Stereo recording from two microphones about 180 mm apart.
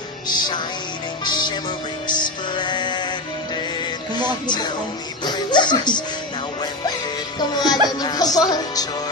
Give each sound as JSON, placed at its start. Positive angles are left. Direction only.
{"t": 0.3, "sound": "speech", "side_deg": 25}
{"t": 1.2, "sound": "music", "side_deg": 25}
{"t": 4.1, "sound": "speech", "side_deg": 25}
{"t": 5.2, "sound": "music", "side_deg": 25}
{"t": 7.3, "sound": "speech", "side_deg": 25}